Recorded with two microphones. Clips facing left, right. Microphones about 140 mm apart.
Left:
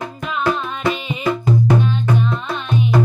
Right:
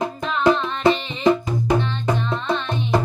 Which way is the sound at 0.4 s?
25° right (ahead or behind).